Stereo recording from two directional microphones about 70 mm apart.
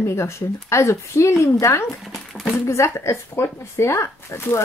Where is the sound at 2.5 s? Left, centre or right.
Left.